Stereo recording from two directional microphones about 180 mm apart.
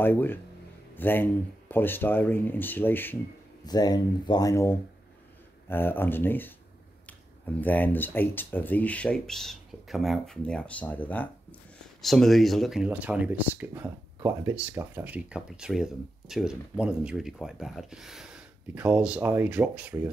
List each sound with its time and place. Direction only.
0.0 s speech: 10° left (ahead or behind)
3.6 s speech: 20° left (ahead or behind); by 20.1 s 10° right (ahead or behind)